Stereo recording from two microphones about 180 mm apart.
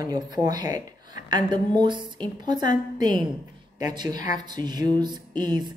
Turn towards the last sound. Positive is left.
turn(degrees=-25)  # may be behind; listen again after turning